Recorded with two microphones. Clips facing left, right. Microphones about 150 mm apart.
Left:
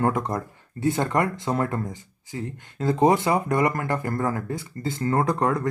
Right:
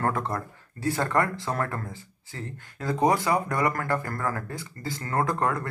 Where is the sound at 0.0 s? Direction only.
15° left (ahead or behind).